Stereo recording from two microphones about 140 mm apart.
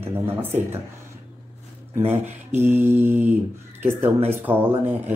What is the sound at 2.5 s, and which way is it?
Mantra, 15° right (ahead or behind).